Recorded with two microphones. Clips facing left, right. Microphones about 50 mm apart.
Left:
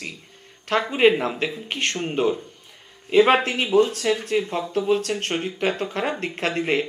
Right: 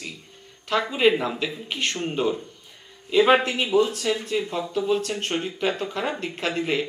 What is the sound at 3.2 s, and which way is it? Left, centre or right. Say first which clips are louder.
Speech: left 1 dB; left.